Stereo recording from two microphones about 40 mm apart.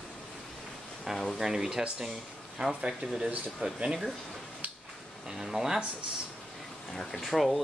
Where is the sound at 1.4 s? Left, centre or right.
Centre.